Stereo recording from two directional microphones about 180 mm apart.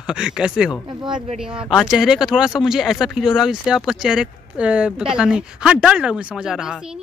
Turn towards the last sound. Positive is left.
turn(degrees=-5)  # may be behind; listen again after turning